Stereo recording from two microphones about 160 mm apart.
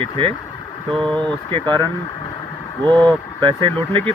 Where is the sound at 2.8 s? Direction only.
25° right (ahead or behind).